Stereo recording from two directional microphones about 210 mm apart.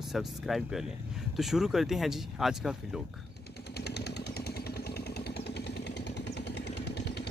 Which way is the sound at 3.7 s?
50° left (ahead or behind).